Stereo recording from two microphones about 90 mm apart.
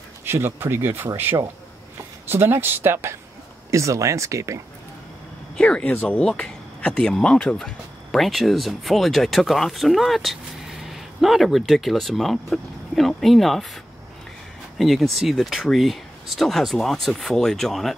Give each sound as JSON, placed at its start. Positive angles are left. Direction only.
{"t": 0.2, "sound": "speech", "side_deg": -25}
{"t": 5.6, "sound": "speech", "side_deg": 10}
{"t": 14.8, "sound": "speech", "side_deg": 0}